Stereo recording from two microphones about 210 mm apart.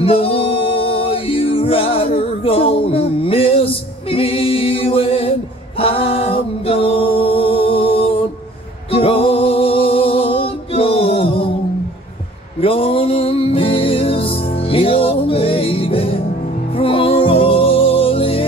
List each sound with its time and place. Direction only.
0.0 s music: 25° left (ahead or behind)
12.5 s music: 25° left (ahead or behind)